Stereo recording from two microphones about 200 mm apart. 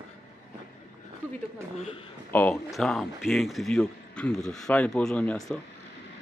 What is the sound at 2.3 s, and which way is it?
Speech, 10° left (ahead or behind).